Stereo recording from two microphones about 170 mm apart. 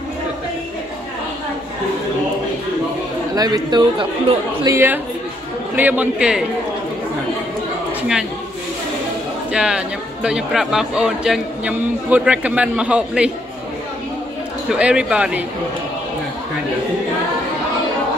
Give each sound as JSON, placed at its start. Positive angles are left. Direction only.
{"t": 3.3, "sound": "speech", "side_deg": -25}
{"t": 4.6, "sound": "speech", "side_deg": -15}
{"t": 9.5, "sound": "speech", "side_deg": -5}
{"t": 14.7, "sound": "speech", "side_deg": -5}